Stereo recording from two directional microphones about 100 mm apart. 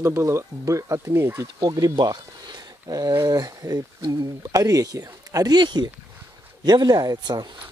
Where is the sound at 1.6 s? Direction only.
40° right (ahead or behind).